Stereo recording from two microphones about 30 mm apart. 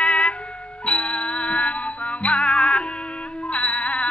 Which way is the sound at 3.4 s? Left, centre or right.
Left.